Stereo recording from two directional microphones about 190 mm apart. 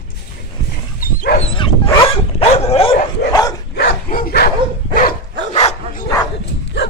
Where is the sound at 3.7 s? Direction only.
55° left (ahead or behind).